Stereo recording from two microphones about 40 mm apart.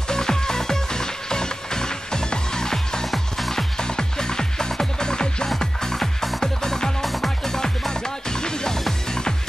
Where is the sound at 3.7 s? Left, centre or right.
Centre.